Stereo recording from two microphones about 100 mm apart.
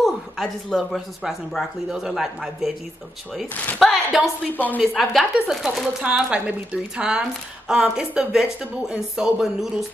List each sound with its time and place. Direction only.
0.0 s speech: centre (ahead or behind)
3.8 s speech: centre (ahead or behind)
4.5 s speech: 15° left (ahead or behind)
4.9 s speech: centre (ahead or behind)